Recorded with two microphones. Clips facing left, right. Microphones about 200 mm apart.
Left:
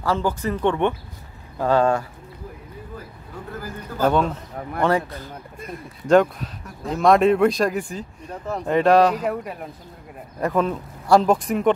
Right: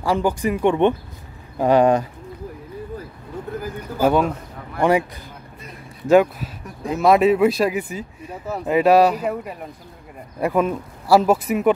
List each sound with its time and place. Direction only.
0.0 s speech: 15° right (ahead or behind)
4.0 s speech: 10° right (ahead or behind)